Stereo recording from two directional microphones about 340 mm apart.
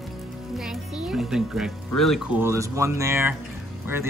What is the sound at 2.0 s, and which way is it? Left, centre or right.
Speech, centre.